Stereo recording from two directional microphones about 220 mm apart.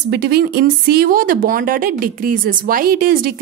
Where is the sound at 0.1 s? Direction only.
50° right (ahead or behind).